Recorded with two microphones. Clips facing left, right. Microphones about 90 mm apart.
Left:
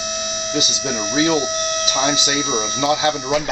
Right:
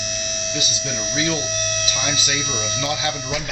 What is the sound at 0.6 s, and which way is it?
Speech, 20° left (ahead or behind).